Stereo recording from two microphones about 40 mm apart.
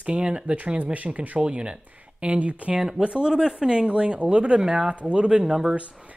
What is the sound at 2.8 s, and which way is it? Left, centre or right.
Speech, centre.